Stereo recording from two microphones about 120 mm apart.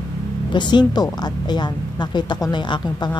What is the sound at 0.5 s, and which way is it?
A woman's voice, 40° left (ahead or behind).